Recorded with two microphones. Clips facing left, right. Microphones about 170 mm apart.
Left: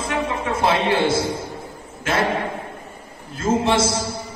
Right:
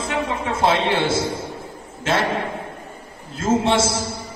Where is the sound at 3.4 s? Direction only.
25° right (ahead or behind).